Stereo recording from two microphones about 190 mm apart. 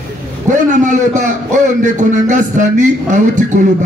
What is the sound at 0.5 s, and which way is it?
A man's voice, 40° right (ahead or behind).